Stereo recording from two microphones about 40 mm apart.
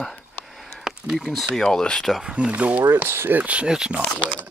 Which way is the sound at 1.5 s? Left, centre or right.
Centre.